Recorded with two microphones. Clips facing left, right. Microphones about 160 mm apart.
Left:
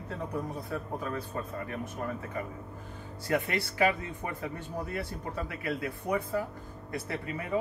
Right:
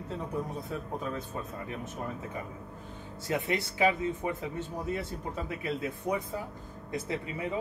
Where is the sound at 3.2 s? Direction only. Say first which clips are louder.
Left 1 dB; 20° right (ahead or behind).